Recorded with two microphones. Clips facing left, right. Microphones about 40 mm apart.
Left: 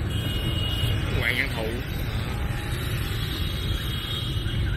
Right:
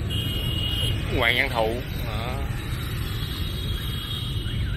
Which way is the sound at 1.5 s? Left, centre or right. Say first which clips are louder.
Right 6 dB; centre.